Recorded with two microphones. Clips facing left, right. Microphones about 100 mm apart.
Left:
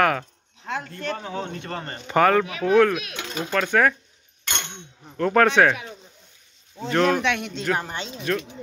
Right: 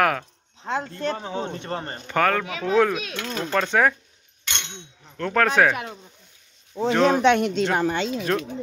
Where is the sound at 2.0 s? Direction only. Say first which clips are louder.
Left 4 dB; 10° left (ahead or behind).